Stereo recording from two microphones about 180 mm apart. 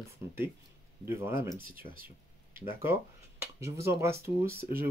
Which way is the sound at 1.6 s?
55° right (ahead or behind).